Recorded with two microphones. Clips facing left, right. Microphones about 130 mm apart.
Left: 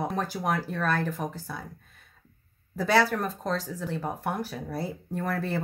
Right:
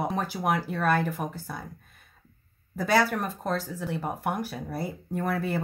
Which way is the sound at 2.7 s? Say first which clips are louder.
Even; centre (ahead or behind).